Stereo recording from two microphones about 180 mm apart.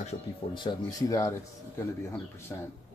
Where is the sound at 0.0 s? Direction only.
40° left (ahead or behind).